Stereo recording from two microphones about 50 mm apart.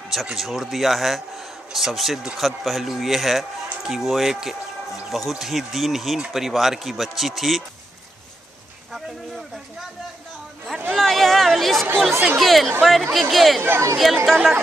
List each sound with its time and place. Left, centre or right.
0.1 s a man's voice: centre
11.0 s a man's voice: centre
13.6 s speech: right
13.9 s a man's voice: centre